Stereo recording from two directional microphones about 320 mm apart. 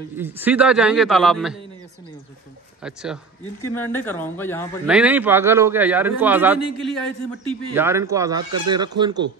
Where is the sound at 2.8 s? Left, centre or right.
Centre.